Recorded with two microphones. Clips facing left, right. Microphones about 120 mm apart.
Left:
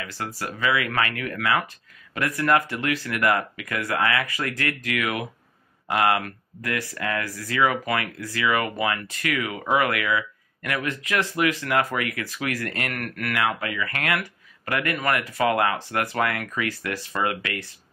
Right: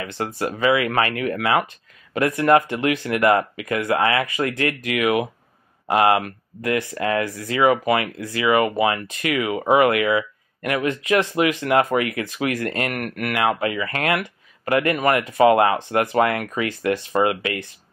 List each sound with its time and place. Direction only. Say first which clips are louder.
0.0 s speech: right 6 dB; 20° right (ahead or behind)